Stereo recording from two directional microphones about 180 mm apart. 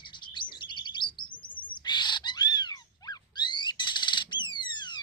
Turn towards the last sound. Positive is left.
turn(degrees=25)  # may be behind; listen again after turning